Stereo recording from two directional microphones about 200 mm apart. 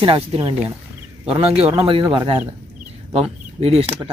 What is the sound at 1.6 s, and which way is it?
Speech, 30° right (ahead or behind).